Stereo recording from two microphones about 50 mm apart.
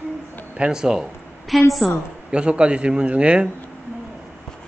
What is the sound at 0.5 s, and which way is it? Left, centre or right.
Speech, centre.